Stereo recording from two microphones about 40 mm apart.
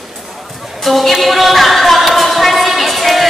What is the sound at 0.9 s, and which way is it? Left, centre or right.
Music, centre.